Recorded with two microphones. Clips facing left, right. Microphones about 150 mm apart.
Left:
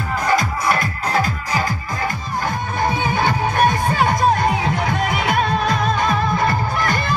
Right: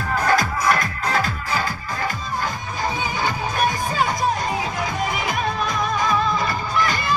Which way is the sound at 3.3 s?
65° left (ahead or behind).